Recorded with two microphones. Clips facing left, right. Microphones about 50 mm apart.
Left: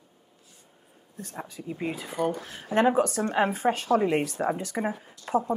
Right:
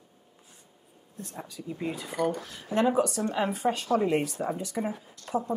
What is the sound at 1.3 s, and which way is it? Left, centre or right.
A woman's voice, left.